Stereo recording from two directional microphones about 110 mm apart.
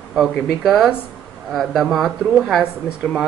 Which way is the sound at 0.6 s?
5° right (ahead or behind).